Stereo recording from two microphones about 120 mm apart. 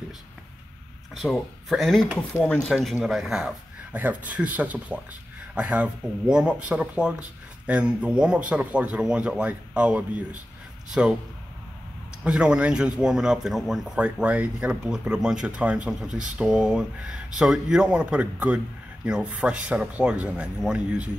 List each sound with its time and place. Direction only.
1.1 s speech: centre (ahead or behind)
12.2 s speech: 5° right (ahead or behind)